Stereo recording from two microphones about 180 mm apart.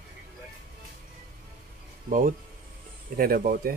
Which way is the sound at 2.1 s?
45° right (ahead or behind).